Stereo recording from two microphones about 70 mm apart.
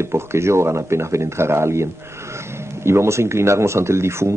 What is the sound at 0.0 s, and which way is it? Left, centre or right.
Speech, right.